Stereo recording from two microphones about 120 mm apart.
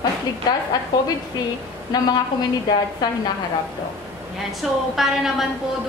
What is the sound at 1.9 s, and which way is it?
Speech, 35° left (ahead or behind).